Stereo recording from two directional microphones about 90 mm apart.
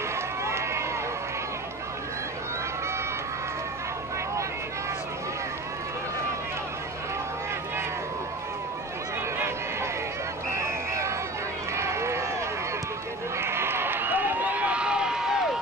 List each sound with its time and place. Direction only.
0.4 s run: 30° right (ahead or behind)
10.6 s a sound: 30° right (ahead or behind)
11.7 s run: 30° right (ahead or behind)
13.4 s run: 25° right (ahead or behind); by 15.4 s 5° right (ahead or behind)